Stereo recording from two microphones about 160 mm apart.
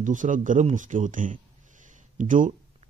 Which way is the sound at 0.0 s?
55° right (ahead or behind).